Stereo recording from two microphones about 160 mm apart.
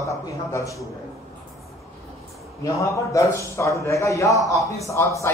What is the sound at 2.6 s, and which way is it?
A man's voice, 20° left (ahead or behind).